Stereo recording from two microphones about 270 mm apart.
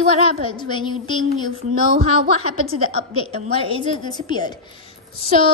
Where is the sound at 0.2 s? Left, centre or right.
Centre.